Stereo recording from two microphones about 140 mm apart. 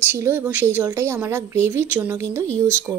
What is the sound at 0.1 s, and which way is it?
A woman's voice, 15° right (ahead or behind).